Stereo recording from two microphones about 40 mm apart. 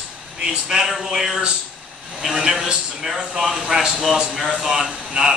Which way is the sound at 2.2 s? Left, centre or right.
Centre.